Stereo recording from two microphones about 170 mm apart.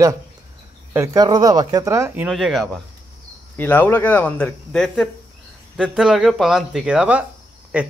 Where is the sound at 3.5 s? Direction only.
10° left (ahead or behind).